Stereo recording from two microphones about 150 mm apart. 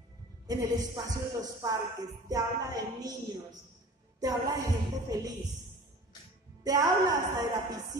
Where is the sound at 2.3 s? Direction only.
25° right (ahead or behind).